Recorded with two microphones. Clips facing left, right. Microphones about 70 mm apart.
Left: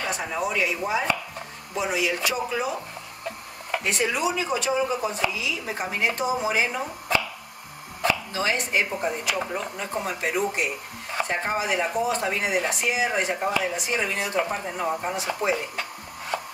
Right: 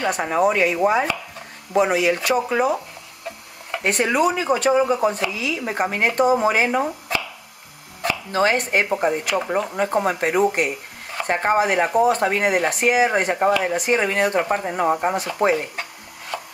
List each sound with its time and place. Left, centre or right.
0.0 s speech: right
3.8 s speech: right
8.3 s speech: right
16.3 s rub: left